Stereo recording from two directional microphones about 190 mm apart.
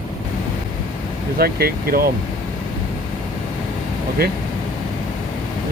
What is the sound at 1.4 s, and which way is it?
Speech, 55° right (ahead or behind).